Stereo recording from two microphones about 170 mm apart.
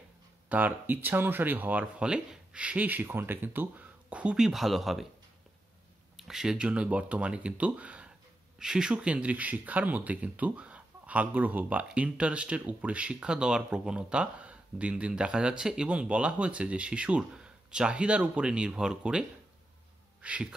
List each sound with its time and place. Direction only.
0.5 s speech: 10° right (ahead or behind)
6.1 s speech: 5° right (ahead or behind)
20.2 s a sound: 5° right (ahead or behind)